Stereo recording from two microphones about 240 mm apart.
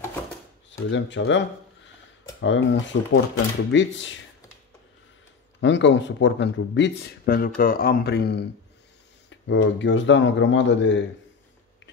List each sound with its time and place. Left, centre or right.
0.7 s speech: left
2.4 s speech: left
5.6 s speech: left